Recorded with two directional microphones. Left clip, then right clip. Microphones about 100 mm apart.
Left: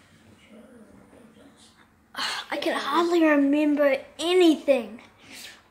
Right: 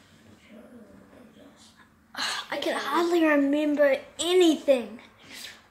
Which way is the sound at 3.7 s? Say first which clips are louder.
Right 2 dB; 20° left (ahead or behind).